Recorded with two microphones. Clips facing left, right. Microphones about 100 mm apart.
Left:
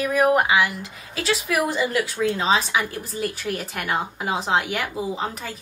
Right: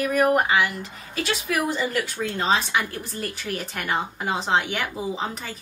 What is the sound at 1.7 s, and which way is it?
A woman's voice, centre (ahead or behind).